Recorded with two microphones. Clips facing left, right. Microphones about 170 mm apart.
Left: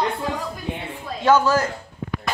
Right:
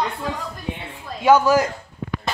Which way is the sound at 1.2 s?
15° right (ahead or behind).